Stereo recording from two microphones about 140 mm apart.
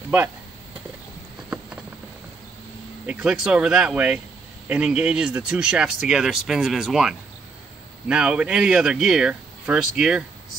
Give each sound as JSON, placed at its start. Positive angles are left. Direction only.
{"t": 3.1, "sound": "speech", "side_deg": -5}